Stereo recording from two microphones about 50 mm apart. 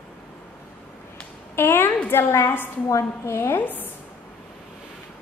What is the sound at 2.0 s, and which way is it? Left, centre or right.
Speech, left.